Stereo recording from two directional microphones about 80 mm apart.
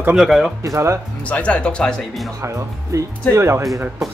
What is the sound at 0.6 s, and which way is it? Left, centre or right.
Speech, right.